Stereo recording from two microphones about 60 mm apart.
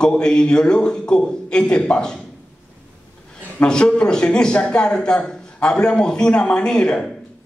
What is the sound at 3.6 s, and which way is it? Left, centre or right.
A man's voice, centre.